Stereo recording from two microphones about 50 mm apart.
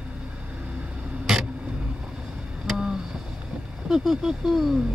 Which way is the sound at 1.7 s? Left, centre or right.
Centre.